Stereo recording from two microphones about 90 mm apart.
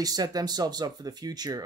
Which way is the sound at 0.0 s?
45° right (ahead or behind).